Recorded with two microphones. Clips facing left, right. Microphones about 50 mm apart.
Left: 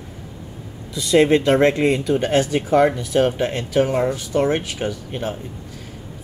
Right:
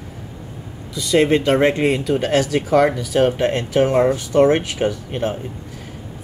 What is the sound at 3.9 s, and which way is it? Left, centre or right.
Speech, right.